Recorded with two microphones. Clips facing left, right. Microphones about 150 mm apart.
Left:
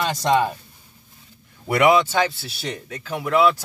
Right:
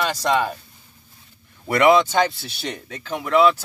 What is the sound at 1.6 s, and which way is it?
Speech, 10° left (ahead or behind).